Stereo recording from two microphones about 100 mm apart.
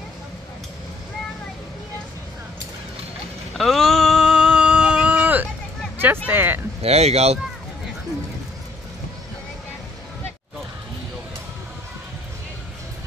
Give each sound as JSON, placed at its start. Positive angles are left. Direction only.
{"t": 3.5, "sound": "a sound", "side_deg": 0}
{"t": 5.9, "sound": "speech", "side_deg": -20}
{"t": 6.8, "sound": "speech", "side_deg": -90}